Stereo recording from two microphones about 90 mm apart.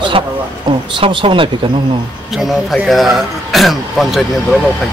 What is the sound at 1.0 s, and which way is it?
Speech, 70° right (ahead or behind).